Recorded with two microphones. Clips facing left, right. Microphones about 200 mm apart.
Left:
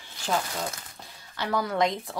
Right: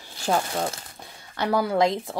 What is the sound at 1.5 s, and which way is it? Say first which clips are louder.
Speech: right 4 dB; 30° right (ahead or behind).